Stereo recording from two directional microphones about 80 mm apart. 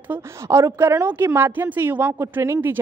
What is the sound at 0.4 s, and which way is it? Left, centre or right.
A woman's voice, right.